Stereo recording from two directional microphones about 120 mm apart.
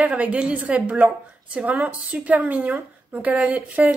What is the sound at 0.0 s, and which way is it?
Speech, 10° right (ahead or behind).